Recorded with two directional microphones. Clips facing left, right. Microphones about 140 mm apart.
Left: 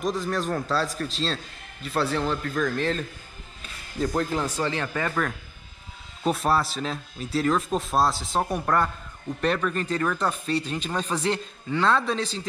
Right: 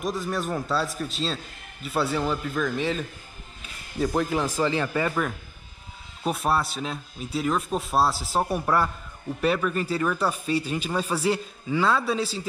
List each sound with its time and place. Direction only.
0.0 s a man's voice: 5° right (ahead or behind)